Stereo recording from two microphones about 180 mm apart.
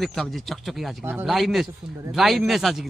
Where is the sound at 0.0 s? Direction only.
Centre (ahead or behind).